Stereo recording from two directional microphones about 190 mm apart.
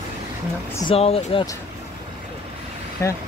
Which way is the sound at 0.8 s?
30° left (ahead or behind).